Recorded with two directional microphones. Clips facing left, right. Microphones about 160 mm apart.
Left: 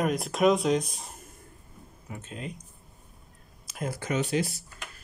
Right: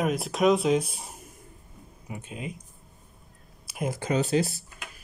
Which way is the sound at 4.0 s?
35° right (ahead or behind).